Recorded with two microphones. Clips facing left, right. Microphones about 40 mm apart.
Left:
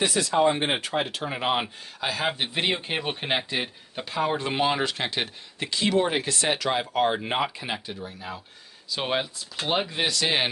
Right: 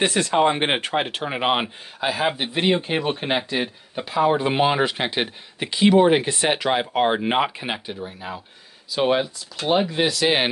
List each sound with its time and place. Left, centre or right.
0.0 s speech: right
2.0 s speech: centre
4.4 s speech: centre
8.9 s speech: centre
10.2 s speech: centre